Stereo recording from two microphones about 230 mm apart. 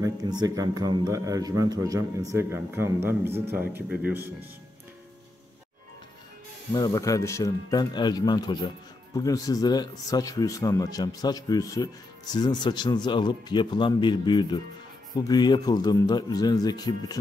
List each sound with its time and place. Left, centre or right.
0.0 s a man's voice: centre
6.7 s speech: centre